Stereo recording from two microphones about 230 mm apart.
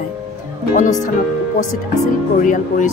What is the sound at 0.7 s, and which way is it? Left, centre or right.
Speech, left.